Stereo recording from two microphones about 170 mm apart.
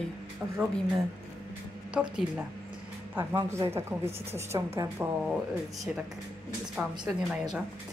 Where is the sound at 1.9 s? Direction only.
5° right (ahead or behind).